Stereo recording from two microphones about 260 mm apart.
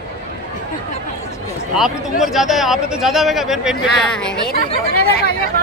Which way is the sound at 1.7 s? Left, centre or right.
Centre.